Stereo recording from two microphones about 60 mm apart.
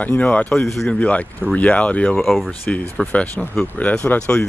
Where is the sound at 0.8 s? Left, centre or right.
Left.